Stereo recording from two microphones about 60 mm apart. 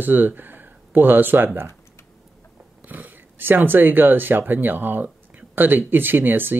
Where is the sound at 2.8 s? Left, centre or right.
Right.